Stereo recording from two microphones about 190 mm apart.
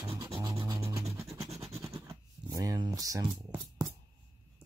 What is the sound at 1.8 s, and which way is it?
Scratch, 15° right (ahead or behind).